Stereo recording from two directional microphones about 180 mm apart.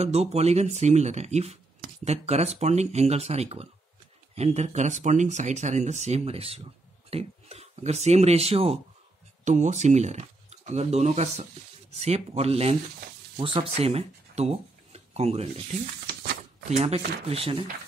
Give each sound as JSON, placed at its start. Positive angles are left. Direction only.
{"t": 0.0, "sound": "speech", "side_deg": -35}
{"t": 16.7, "sound": "speech", "side_deg": -35}